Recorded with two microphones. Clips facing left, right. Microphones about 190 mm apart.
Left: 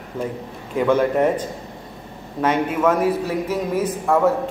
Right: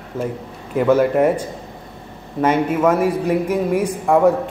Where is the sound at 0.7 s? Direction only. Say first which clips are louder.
Right 3 dB; 5° right (ahead or behind).